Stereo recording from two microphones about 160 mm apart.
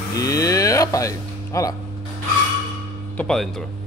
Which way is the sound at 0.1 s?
20° left (ahead or behind).